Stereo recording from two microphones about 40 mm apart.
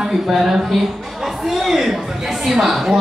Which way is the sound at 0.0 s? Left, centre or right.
Centre.